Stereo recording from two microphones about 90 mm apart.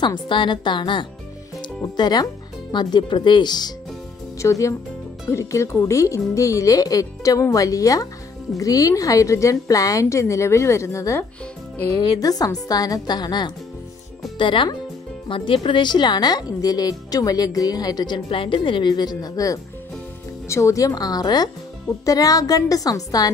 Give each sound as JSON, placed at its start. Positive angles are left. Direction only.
{"t": 0.0, "sound": "a woman's voice", "side_deg": 60}
{"t": 4.4, "sound": "a woman's voice", "side_deg": 35}
{"t": 14.4, "sound": "a woman's voice", "side_deg": 65}